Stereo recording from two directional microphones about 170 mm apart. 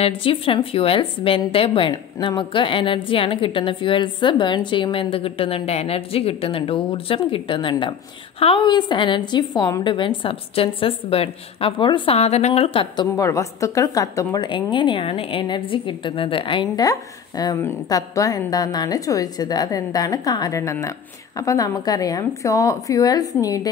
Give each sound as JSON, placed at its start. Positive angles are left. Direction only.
{"t": 0.0, "sound": "a woman's voice", "side_deg": 30}